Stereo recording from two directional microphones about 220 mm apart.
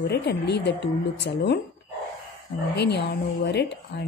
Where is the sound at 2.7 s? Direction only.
50° left (ahead or behind).